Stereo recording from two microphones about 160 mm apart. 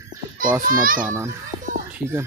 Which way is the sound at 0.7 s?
60° right (ahead or behind).